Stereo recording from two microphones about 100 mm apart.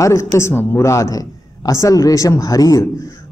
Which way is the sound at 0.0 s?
30° left (ahead or behind).